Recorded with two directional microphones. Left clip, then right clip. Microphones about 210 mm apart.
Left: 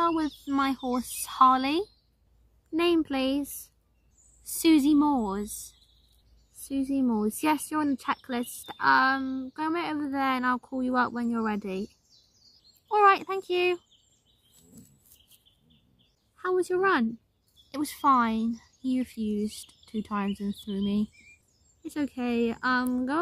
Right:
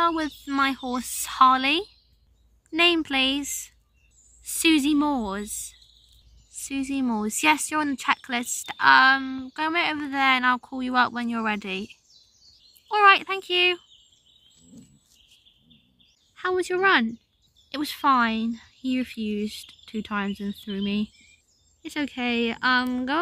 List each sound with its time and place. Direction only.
0.2 s speech: centre (ahead or behind)
14.5 s a sound: 45° left (ahead or behind)
16.3 s speech: centre (ahead or behind)